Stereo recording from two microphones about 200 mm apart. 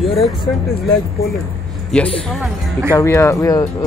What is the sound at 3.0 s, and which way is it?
Speech, 15° left (ahead or behind).